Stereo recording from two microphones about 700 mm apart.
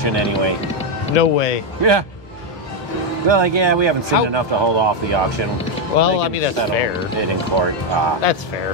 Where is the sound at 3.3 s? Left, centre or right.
Right.